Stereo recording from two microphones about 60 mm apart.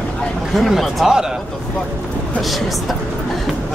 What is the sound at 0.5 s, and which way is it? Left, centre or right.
Speech, centre.